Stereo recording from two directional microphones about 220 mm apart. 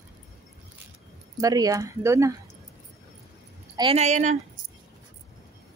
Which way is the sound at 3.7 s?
25° right (ahead or behind).